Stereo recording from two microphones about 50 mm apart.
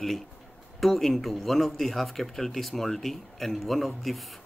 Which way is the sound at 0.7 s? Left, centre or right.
Centre.